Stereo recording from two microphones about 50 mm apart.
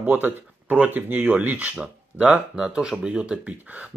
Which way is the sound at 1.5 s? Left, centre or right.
Right.